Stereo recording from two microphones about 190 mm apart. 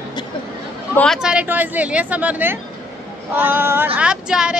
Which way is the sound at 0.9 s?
5° left (ahead or behind).